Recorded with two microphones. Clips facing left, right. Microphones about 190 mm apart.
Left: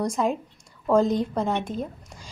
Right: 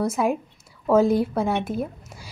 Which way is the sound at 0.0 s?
5° right (ahead or behind).